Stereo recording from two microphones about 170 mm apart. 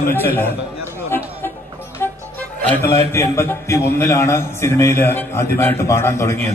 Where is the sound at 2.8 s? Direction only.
15° left (ahead or behind).